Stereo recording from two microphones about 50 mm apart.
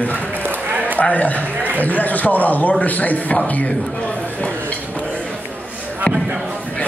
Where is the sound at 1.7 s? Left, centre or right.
Left.